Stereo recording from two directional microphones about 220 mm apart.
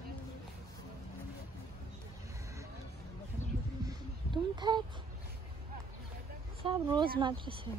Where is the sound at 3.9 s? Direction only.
20° right (ahead or behind).